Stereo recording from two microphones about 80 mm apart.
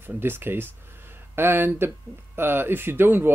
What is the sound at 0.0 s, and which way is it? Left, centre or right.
Speech, right.